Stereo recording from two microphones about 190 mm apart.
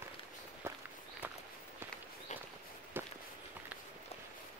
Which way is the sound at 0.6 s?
15° right (ahead or behind).